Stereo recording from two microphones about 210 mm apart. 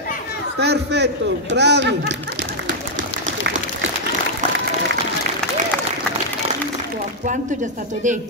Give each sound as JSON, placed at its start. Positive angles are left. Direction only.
{"t": 0.6, "sound": "speech", "side_deg": -50}